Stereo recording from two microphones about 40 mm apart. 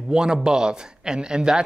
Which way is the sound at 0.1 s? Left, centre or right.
Centre.